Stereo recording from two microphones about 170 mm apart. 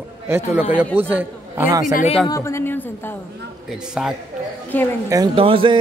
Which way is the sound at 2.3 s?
15° left (ahead or behind).